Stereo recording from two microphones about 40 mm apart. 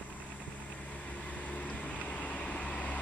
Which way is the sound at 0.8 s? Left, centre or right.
Left.